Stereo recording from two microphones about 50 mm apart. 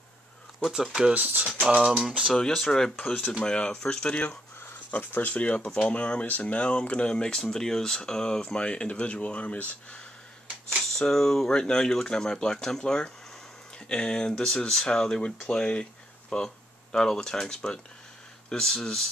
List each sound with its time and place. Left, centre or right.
0.7 s speech: centre
1.6 s a sound: right
2.5 s speech: centre
4.9 s speech: left
10.7 s speech: centre
16.4 s speech: centre